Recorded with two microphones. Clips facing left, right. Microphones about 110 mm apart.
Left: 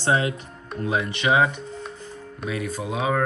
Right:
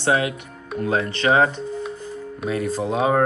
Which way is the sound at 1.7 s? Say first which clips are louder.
Right 7 dB; 5° right (ahead or behind).